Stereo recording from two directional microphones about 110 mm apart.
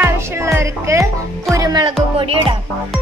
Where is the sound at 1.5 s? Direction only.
35° right (ahead or behind).